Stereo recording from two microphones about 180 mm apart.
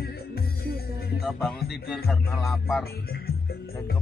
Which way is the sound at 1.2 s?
Centre (ahead or behind).